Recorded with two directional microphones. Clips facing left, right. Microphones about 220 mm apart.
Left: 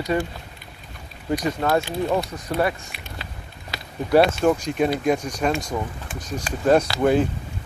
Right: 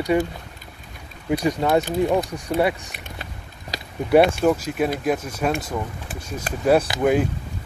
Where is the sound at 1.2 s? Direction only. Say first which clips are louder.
Right 2 dB; 10° right (ahead or behind).